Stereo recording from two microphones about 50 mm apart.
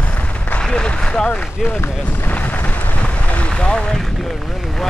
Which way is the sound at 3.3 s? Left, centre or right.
Left.